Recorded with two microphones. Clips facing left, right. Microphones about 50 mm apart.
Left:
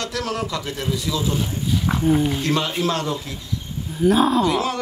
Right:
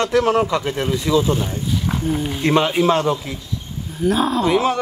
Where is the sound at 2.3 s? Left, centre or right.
Right.